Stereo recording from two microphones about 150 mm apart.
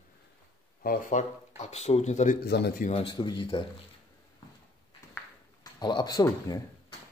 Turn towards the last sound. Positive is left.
turn(degrees=25)  # may be behind; listen again after turning